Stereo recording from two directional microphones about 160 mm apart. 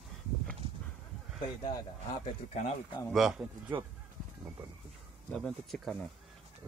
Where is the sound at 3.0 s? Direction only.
Centre (ahead or behind).